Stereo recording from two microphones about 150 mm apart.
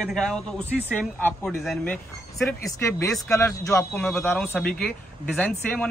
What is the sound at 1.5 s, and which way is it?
Speech, centre (ahead or behind).